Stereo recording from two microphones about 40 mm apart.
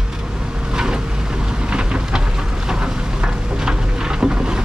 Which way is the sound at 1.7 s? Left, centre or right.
Right.